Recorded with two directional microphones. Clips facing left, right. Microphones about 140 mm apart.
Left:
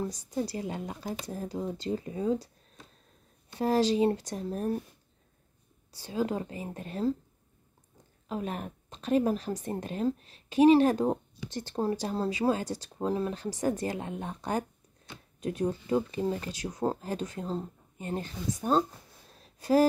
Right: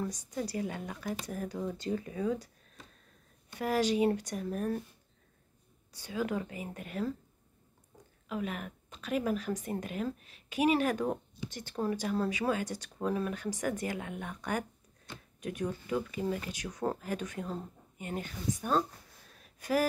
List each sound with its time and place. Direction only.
0.0 s speech: 25° left (ahead or behind)
3.5 s speech: 30° left (ahead or behind)
5.9 s a woman's voice: 30° left (ahead or behind)
8.3 s a woman's voice: 35° left (ahead or behind)
15.6 s speech: 30° left (ahead or behind)
19.3 s a sound: 30° left (ahead or behind)